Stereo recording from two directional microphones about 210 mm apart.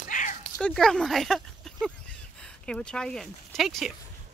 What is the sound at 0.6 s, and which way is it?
Speech, 5° left (ahead or behind).